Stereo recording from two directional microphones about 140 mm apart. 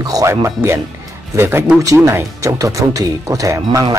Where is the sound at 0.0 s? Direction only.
25° right (ahead or behind).